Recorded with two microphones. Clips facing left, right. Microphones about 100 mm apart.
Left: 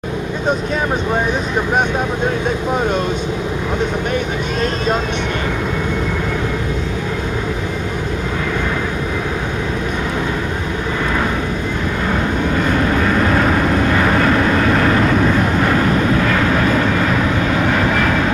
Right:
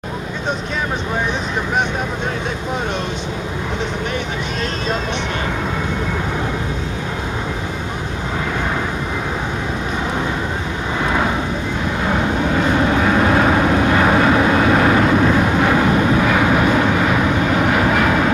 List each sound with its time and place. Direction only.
12.9 s vehicle: 10° right (ahead or behind)